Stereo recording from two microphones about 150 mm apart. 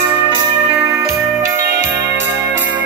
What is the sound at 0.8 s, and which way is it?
Music, 20° right (ahead or behind).